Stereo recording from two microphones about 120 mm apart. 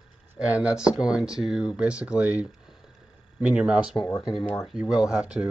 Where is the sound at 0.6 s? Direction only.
10° right (ahead or behind).